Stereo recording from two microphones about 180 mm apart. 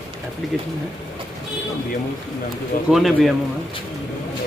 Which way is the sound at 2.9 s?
Centre (ahead or behind).